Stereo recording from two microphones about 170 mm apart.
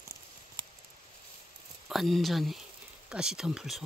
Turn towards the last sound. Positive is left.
turn(degrees=0)  # may be behind; listen again after turning